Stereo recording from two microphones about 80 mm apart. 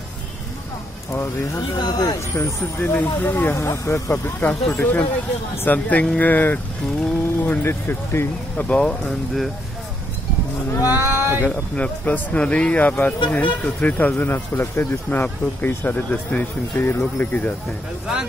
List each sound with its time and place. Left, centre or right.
1.1 s speech: left
1.8 s speech: left
2.1 s speech: left
2.9 s speech: left
4.1 s speech: left
8.6 s speech: centre
10.9 s speech: right
11.4 s speech: centre